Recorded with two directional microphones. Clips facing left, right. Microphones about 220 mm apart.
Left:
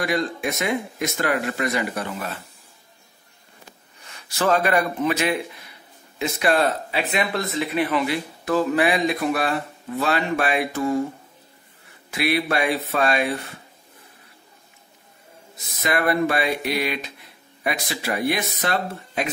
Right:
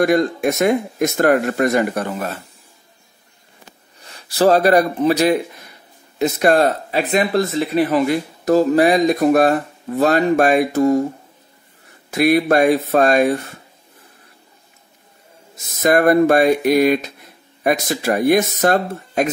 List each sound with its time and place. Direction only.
0.0 s speech: 45° right (ahead or behind)
4.0 s speech: 35° right (ahead or behind)
12.1 s speech: 45° right (ahead or behind)
15.5 s speech: 45° right (ahead or behind)